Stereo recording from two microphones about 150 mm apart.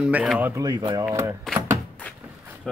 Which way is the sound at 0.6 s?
30° right (ahead or behind).